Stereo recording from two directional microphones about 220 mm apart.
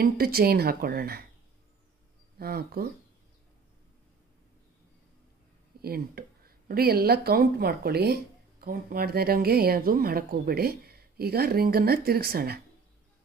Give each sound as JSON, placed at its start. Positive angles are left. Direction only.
{"t": 0.0, "sound": "speech", "side_deg": -45}
{"t": 2.3, "sound": "speech", "side_deg": -45}
{"t": 5.8, "sound": "speech", "side_deg": -45}